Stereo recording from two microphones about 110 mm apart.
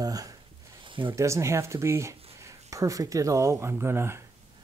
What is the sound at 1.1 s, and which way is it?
Speech, 25° right (ahead or behind).